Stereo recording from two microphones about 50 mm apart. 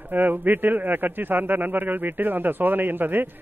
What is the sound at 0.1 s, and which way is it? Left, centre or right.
A man's voice, right.